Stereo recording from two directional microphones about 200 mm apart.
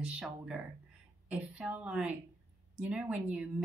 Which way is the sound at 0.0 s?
5° right (ahead or behind).